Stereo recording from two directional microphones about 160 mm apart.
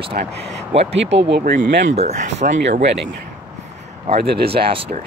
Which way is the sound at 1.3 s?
75° right (ahead or behind).